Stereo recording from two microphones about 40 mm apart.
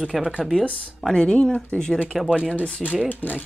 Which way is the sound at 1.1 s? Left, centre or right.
Centre.